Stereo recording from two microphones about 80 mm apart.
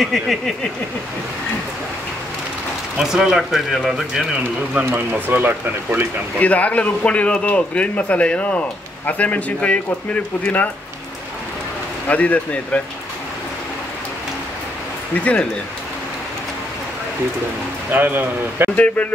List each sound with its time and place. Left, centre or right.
0.0 s a sound: centre
3.0 s speech: centre
4.4 s speech: right
6.4 s a man's voice: centre
12.1 s a man's voice: centre
17.9 s speech: right